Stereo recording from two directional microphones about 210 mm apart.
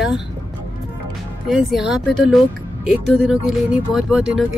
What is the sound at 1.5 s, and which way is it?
Speech, 5° right (ahead or behind).